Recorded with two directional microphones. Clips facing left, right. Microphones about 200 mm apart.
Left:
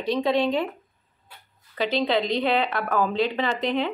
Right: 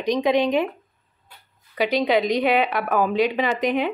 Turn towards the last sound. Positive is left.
turn(degrees=-15)  # may be behind; listen again after turning